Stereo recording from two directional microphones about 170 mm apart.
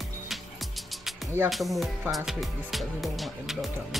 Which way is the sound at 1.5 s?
Centre (ahead or behind).